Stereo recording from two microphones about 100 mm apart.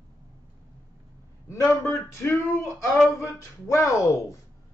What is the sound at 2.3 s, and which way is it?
A woman's voice, 30° left (ahead or behind).